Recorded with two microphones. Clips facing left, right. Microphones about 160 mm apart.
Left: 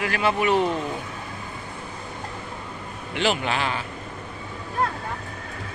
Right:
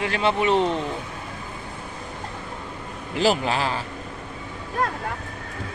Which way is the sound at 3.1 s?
35° right (ahead or behind).